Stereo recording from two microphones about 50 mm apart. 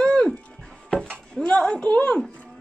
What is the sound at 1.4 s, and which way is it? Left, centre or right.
Speech, centre.